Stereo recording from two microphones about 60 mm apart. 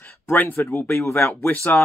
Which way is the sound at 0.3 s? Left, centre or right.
Left.